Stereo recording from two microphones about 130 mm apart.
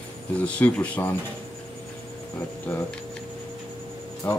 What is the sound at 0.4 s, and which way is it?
Speech, 10° left (ahead or behind).